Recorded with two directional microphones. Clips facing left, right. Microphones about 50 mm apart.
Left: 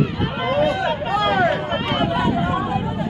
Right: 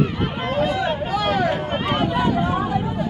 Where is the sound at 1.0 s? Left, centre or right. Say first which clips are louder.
Left 4 dB; left.